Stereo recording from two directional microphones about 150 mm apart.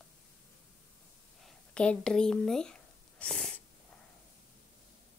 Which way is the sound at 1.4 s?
5° left (ahead or behind).